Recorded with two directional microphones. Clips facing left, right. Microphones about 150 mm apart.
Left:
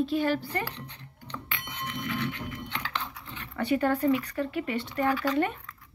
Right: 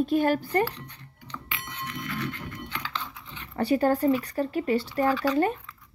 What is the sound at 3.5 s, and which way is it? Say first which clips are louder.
Speech: right 3 dB; 35° right (ahead or behind).